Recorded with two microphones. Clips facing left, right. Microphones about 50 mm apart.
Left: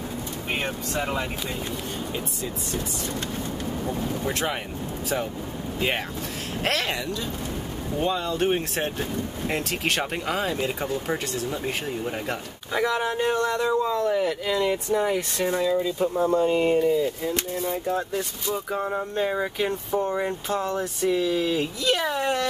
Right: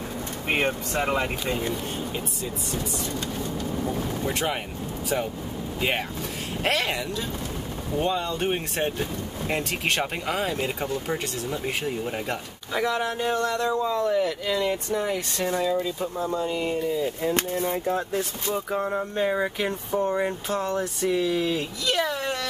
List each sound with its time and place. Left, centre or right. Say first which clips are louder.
0.5 s speech: right 4 dB; right
3.8 s speech: left 1 dB; centre
5.8 s speech: even; centre
16.2 s speech: left 7 dB; left
17.3 s speech: right 2 dB; right
17.8 s speech: even; centre